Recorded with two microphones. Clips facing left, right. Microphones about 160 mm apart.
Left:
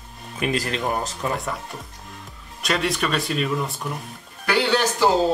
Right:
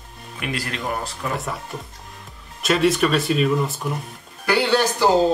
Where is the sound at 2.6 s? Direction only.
Centre (ahead or behind).